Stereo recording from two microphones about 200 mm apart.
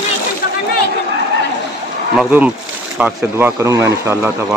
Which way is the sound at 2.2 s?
5° right (ahead or behind).